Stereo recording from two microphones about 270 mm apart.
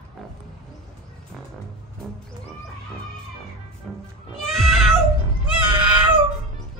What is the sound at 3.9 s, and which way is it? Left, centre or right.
Music, centre.